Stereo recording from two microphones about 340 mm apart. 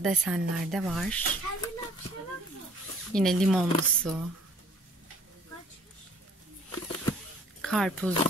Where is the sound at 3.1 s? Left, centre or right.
Centre.